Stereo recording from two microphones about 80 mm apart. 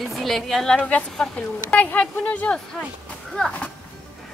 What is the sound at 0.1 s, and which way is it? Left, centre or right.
A woman's voice, centre.